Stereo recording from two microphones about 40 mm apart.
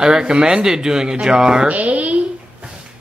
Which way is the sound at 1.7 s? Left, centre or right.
Right.